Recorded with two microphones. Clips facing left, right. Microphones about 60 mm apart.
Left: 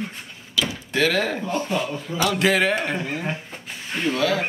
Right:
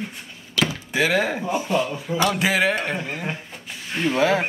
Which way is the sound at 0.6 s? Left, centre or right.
Right.